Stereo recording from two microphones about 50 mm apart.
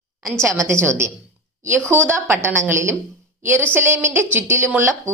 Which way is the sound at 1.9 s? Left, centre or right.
Right.